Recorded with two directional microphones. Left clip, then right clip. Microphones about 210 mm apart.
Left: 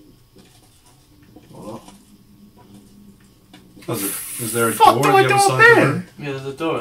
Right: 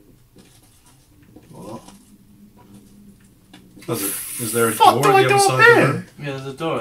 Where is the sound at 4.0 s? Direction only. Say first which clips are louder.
Even; centre (ahead or behind).